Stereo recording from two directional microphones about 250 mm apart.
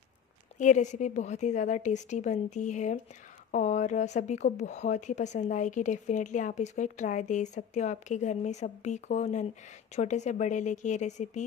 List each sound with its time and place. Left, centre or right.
0.6 s speech: left